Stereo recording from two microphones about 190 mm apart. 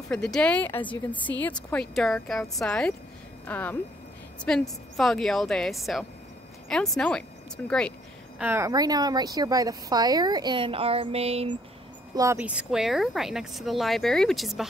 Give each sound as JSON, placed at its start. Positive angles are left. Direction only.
{"t": 0.1, "sound": "a woman's voice", "side_deg": 5}
{"t": 8.4, "sound": "speech", "side_deg": -10}
{"t": 12.2, "sound": "speech", "side_deg": -10}